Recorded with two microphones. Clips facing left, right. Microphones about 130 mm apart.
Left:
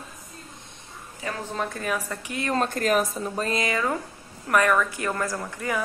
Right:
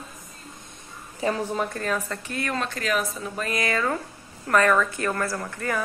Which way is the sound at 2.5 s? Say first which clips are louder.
Left 5 dB; 50° left (ahead or behind).